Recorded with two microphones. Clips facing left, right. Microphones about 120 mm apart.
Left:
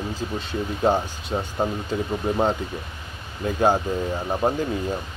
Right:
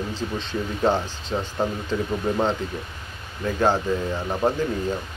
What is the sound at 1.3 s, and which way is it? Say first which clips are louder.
Speech: even; 25° left (ahead or behind).